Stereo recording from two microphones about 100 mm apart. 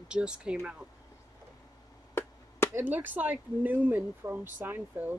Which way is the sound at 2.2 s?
25° left (ahead or behind).